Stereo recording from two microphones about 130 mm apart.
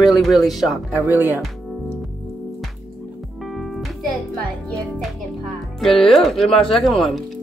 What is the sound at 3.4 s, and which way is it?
Music, centre (ahead or behind).